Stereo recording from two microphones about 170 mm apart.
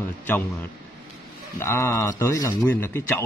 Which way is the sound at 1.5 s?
15° left (ahead or behind).